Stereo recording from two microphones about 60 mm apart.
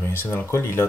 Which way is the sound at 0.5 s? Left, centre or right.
Left.